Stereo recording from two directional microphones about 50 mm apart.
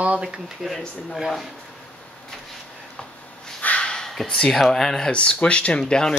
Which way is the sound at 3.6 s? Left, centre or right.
Left.